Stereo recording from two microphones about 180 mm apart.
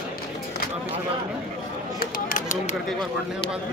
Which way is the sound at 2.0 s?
50° left (ahead or behind).